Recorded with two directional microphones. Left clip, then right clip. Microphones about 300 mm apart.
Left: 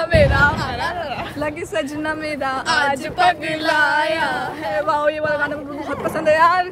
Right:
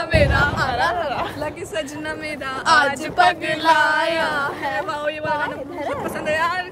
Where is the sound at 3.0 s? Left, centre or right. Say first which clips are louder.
Even; centre.